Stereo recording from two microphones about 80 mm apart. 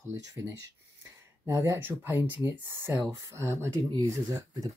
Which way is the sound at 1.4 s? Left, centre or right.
Right.